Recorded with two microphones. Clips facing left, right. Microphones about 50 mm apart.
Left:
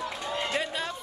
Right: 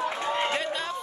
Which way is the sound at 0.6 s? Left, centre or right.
Centre.